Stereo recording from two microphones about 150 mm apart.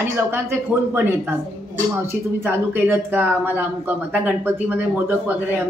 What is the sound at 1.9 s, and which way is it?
Speech, 15° right (ahead or behind).